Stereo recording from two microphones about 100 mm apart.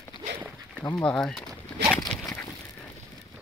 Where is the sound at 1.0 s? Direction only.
10° left (ahead or behind).